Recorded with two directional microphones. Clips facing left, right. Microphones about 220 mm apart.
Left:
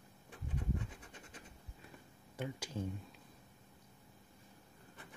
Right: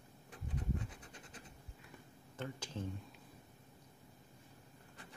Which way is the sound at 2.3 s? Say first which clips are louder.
Left 2 dB; 10° left (ahead or behind).